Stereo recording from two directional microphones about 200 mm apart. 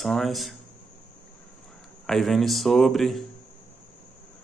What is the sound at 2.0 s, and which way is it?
Speech, centre (ahead or behind).